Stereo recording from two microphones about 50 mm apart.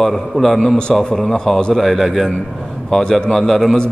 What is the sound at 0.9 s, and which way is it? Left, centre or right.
Speech, centre.